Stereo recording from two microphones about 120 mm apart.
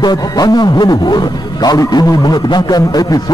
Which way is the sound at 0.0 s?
35° left (ahead or behind).